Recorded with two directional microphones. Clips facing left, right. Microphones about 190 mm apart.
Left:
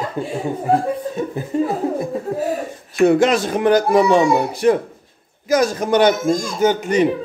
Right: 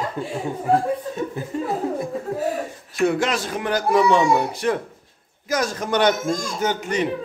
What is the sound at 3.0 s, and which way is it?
Speech, 20° left (ahead or behind).